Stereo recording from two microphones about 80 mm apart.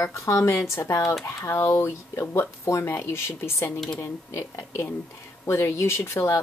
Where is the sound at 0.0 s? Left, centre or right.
Left.